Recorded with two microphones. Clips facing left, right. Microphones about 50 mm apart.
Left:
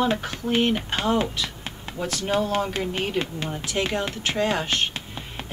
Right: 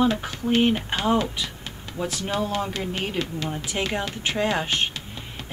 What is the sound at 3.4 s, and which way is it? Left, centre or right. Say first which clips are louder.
Speech: left 1 dB; centre.